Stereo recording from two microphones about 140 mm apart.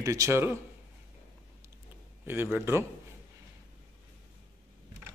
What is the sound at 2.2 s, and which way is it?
Speech, 15° right (ahead or behind).